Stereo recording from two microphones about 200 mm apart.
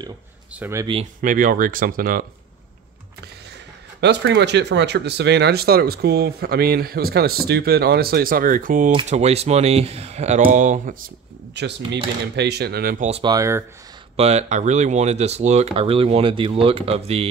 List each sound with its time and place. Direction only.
0.6 s speech: 15° right (ahead or behind)
1.2 s speech: 45° right (ahead or behind)
4.0 s speech: 60° right (ahead or behind); by 8.9 s 40° right (ahead or behind)
9.1 s speech: 30° right (ahead or behind)
11.5 s speech: 60° right (ahead or behind)
13.0 s speech: 30° right (ahead or behind)
13.3 s speech: 15° right (ahead or behind)
14.1 s speech: 30° right (ahead or behind)